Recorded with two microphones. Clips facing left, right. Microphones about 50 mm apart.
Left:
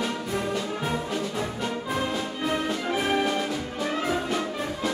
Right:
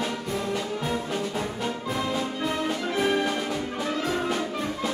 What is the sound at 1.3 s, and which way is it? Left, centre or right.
Music, centre.